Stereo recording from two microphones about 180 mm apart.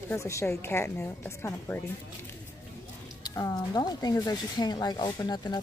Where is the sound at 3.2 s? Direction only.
20° left (ahead or behind).